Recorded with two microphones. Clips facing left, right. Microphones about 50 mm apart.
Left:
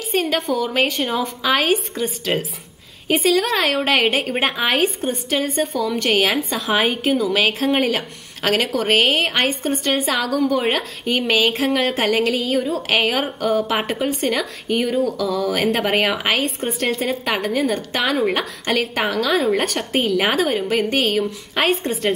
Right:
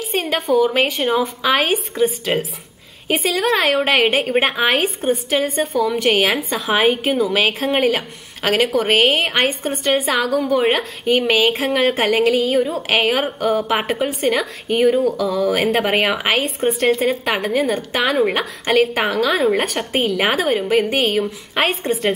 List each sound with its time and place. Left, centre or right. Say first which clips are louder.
0.0 s a woman's voice: even; centre